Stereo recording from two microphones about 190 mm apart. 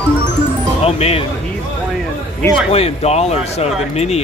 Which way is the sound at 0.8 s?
30° left (ahead or behind).